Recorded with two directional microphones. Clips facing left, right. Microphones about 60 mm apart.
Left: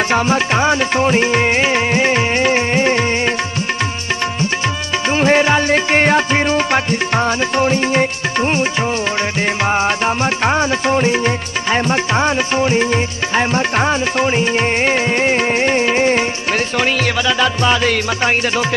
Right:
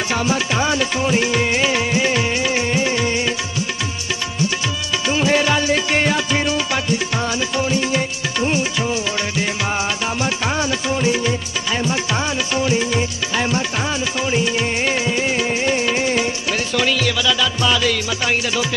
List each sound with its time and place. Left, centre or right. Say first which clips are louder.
0.1 s music: left 5 dB; left
5.1 s music: left 4 dB; left
9.7 s music: left 6 dB; left